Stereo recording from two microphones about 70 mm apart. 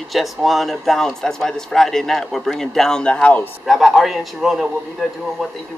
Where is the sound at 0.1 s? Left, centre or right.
Centre.